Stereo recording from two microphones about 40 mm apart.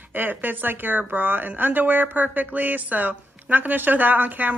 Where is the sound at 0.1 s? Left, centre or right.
Right.